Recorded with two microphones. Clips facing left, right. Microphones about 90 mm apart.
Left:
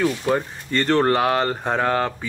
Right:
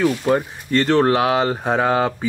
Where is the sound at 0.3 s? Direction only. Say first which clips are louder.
Right 4 dB; 5° right (ahead or behind).